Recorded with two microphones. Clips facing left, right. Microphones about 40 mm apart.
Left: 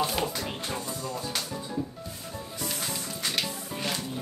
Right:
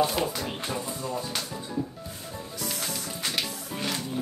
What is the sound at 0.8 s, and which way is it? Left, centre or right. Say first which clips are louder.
Speech: right 2 dB; right.